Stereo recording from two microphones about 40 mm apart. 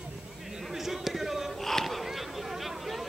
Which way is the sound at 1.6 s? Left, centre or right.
Centre.